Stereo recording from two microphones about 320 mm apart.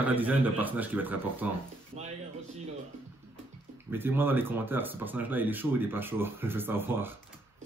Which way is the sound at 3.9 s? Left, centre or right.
Centre.